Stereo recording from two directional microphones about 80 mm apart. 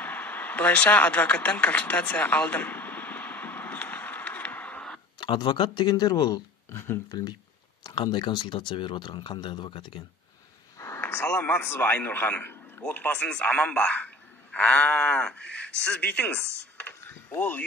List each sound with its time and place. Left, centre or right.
0.0 s a sound: left
5.2 s speech: left
6.7 s speech: left
7.1 s speech: left
7.8 s speech: left
10.8 s a sound: left
11.2 s a man's voice: centre